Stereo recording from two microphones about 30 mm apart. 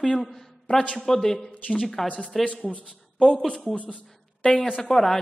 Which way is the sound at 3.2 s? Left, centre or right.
Left.